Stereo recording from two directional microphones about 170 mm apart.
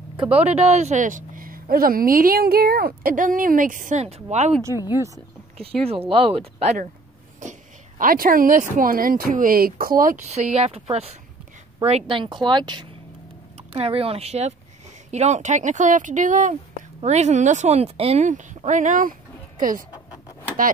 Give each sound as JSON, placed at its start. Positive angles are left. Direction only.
{"t": 0.2, "sound": "speech", "side_deg": -35}
{"t": 4.9, "sound": "speech", "side_deg": -20}
{"t": 5.6, "sound": "speech", "side_deg": -35}